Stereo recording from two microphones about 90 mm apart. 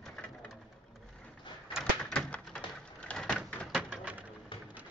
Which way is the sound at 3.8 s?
15° right (ahead or behind).